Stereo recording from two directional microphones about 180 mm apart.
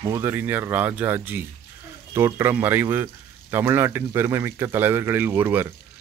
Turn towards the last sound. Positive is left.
turn(degrees=-10)  # may be behind; listen again after turning